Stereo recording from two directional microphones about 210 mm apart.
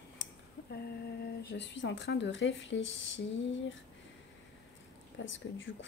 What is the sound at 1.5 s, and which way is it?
Speech, 60° left (ahead or behind).